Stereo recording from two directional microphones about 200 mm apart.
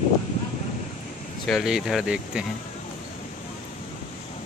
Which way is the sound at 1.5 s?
Centre (ahead or behind).